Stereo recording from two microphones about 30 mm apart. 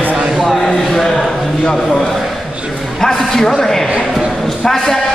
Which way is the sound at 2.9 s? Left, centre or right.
Centre.